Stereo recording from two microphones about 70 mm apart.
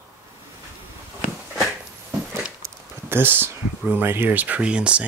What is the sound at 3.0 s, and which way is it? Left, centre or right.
Speech, right.